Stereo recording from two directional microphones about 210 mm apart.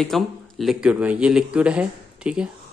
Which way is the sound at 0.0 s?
Centre (ahead or behind).